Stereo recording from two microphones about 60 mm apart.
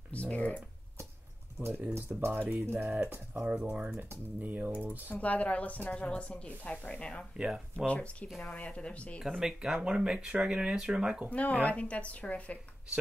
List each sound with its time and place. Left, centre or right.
0.1 s speech: left
1.7 s speech: right
3.3 s typing: right
5.1 s a woman's voice: left
7.3 s speech: centre
7.7 s a woman's voice: left
9.4 s speech: centre
11.2 s a woman's voice: left